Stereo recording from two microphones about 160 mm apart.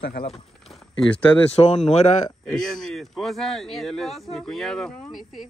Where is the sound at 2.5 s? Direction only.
5° left (ahead or behind).